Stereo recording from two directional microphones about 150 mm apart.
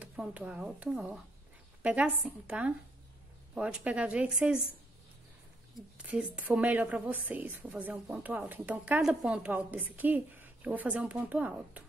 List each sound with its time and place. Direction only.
0.0 s a woman's voice: 10° right (ahead or behind)
5.9 s a woman's voice: 5° right (ahead or behind)